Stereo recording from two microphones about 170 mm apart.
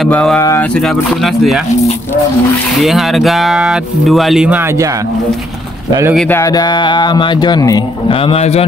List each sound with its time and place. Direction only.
0.0 s speech: 5° left (ahead or behind)
0.4 s speech: 20° left (ahead or behind)
0.7 s speech: centre (ahead or behind)
2.8 s speech: centre (ahead or behind)
6.1 s speech: 10° left (ahead or behind)
6.4 s speech: 25° left (ahead or behind)